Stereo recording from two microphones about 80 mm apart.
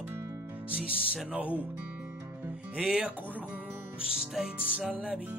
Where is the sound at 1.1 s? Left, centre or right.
Centre.